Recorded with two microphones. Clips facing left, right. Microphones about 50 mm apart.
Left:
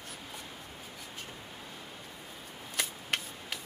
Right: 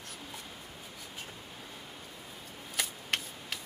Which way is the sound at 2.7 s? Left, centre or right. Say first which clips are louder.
Even; centre.